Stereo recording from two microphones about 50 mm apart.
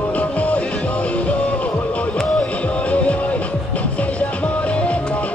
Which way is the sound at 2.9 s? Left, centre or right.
Left.